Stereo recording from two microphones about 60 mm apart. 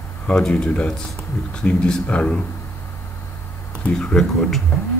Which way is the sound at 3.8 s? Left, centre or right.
Centre.